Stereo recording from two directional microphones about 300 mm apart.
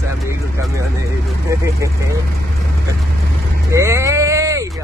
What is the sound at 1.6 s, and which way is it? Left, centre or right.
Speech, centre.